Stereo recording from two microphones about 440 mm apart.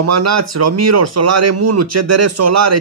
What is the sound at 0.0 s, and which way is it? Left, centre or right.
Speech, right.